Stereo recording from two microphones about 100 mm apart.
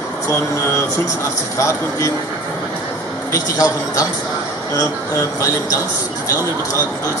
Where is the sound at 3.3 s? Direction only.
35° left (ahead or behind).